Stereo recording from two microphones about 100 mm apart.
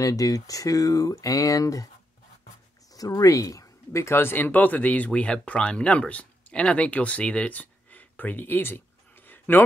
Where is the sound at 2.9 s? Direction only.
35° left (ahead or behind).